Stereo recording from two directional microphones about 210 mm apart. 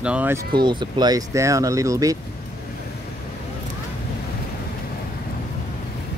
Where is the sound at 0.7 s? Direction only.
20° right (ahead or behind).